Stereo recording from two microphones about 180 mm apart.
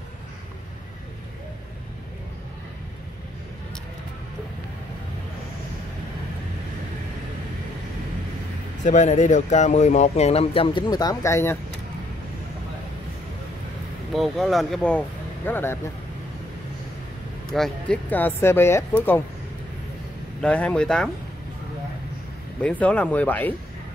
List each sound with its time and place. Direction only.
8.8 s speech: 40° left (ahead or behind); by 11.5 s 15° left (ahead or behind)
14.1 s speech: centre (ahead or behind)
17.6 s speech: 5° left (ahead or behind)
20.4 s speech: 5° left (ahead or behind)
22.6 s speech: 5° left (ahead or behind)